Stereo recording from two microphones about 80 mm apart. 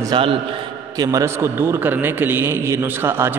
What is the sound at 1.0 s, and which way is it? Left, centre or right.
Speech, right.